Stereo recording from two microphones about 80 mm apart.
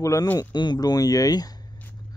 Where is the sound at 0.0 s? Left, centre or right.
Left.